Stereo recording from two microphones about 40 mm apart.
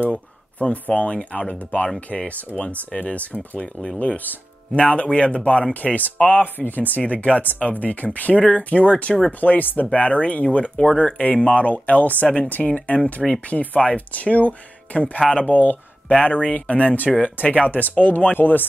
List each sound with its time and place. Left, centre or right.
0.8 s speech: left
3.5 s speech: centre
4.7 s speech: left
7.1 s speech: left
9.4 s speech: left
17.6 s speech: left